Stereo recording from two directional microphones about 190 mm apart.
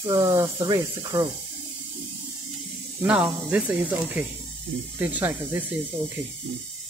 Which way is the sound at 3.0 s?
5° right (ahead or behind).